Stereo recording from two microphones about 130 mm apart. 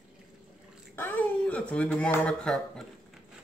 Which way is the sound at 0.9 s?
15° left (ahead or behind).